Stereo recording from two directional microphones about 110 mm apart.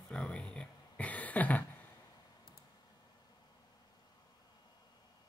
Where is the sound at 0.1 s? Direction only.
10° left (ahead or behind).